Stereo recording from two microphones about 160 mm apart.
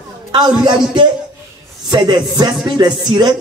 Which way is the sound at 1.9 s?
25° right (ahead or behind).